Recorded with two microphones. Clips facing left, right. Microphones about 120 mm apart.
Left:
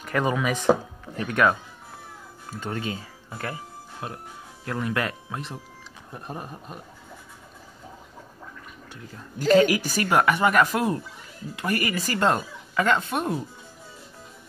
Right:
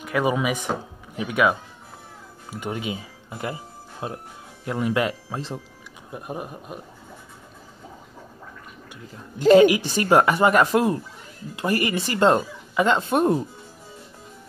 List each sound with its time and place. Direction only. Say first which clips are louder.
0.0 s speech: right 2 dB; 10° right (ahead or behind)
8.9 s speech: even; 20° right (ahead or behind); by 13.4 s 35° right (ahead or behind)